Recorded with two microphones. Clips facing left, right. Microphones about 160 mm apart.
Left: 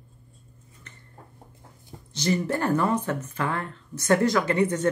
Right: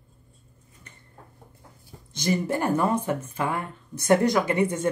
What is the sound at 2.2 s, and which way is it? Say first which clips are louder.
Speech: even; 10° right (ahead or behind).